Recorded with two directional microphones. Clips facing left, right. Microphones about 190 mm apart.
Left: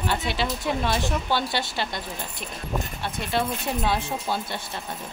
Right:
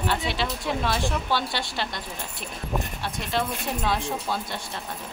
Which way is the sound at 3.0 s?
5° left (ahead or behind).